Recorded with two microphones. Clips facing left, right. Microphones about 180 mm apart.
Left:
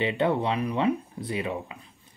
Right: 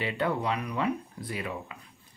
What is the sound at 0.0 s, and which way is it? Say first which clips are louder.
Speech: left 5 dB; 25° left (ahead or behind).